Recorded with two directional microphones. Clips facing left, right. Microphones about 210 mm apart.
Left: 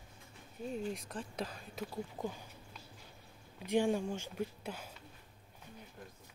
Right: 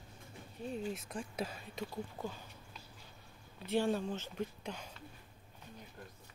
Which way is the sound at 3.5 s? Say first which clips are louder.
Left 2 dB; 15° left (ahead or behind).